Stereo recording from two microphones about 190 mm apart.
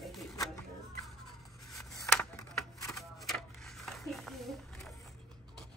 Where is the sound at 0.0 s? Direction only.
Centre (ahead or behind).